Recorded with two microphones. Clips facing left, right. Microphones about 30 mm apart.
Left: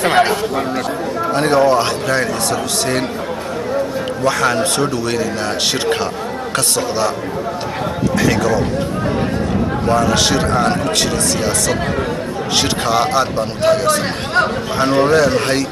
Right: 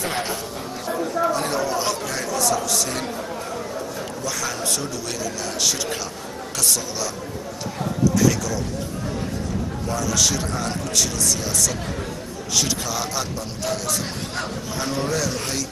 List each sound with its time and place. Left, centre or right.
0.0 s chatter: left
1.3 s speech: left
4.2 s speech: left
8.3 s speech: left